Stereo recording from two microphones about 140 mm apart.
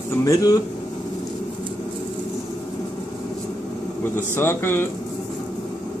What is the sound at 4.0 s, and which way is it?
Speech, 15° left (ahead or behind).